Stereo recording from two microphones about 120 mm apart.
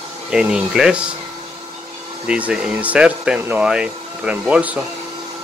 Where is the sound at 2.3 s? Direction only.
10° right (ahead or behind).